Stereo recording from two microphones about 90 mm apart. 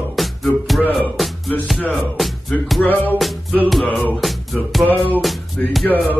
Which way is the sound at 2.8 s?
20° left (ahead or behind).